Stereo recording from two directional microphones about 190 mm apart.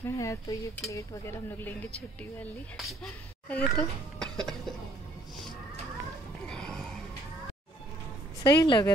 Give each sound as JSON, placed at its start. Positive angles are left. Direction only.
{"t": 0.0, "sound": "speech", "side_deg": 15}
{"t": 6.4, "sound": "music", "side_deg": 5}
{"t": 8.5, "sound": "speech", "side_deg": 25}